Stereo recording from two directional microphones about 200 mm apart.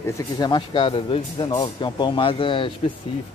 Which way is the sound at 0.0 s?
20° left (ahead or behind).